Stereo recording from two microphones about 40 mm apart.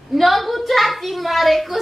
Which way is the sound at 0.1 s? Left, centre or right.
Centre.